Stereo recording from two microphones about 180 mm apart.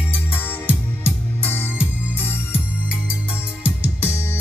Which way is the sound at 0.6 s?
10° left (ahead or behind).